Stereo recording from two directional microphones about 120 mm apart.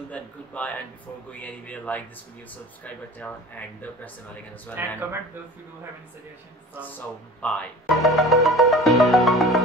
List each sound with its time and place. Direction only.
0.5 s speech: 10° left (ahead or behind)
4.8 s speech: 15° right (ahead or behind)
7.4 s speech: 5° left (ahead or behind)